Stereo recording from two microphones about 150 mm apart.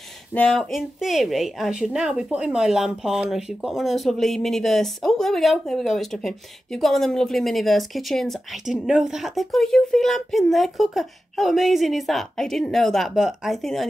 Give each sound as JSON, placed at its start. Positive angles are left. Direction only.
{"t": 0.3, "sound": "speech", "side_deg": 5}